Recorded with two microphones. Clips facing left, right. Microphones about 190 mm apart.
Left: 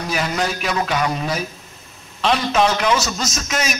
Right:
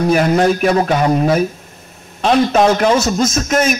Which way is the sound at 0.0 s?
55° right (ahead or behind).